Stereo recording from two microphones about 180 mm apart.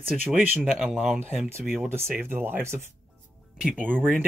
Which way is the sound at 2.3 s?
10° right (ahead or behind).